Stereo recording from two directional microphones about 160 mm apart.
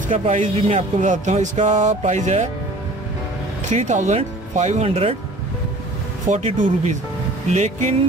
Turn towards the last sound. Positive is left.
turn(degrees=-50)  # may be behind; listen again after turning